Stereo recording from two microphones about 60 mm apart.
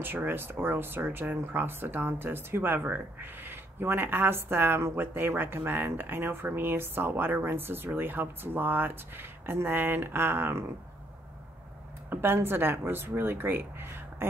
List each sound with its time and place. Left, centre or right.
0.0 s speech: right
12.1 s speech: right